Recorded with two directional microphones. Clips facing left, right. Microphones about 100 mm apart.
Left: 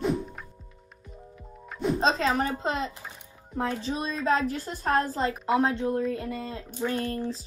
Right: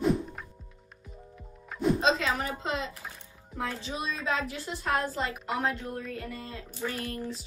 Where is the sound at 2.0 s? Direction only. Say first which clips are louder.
Left 3 dB; 35° left (ahead or behind).